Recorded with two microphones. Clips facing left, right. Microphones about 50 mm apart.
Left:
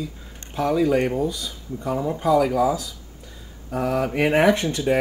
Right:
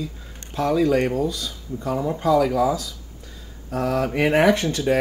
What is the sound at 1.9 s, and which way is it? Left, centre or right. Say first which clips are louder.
Speech: even; centre.